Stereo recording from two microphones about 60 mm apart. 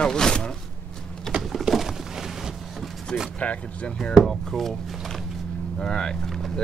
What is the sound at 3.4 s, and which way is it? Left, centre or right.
Speech, left.